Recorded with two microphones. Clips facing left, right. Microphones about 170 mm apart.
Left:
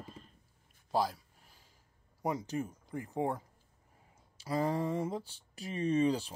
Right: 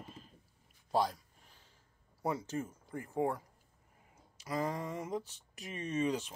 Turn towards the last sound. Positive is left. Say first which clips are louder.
# left 5 dB
turn(degrees=30)  # may be behind; listen again after turning